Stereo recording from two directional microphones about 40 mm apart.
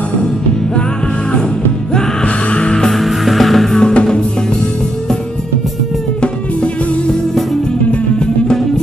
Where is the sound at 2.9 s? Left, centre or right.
Centre.